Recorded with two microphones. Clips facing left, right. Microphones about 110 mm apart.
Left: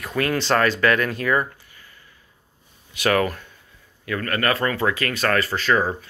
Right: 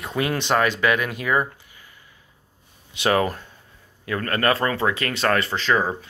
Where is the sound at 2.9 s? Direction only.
25° right (ahead or behind).